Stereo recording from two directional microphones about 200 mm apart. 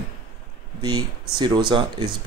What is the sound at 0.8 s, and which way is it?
Speech, 20° right (ahead or behind).